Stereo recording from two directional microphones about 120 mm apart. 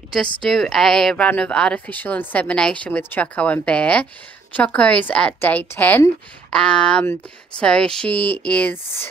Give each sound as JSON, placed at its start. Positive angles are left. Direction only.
{"t": 0.4, "sound": "speech", "side_deg": 5}